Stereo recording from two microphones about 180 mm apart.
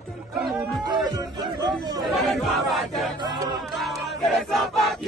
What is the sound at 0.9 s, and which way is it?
Speech, 25° right (ahead or behind).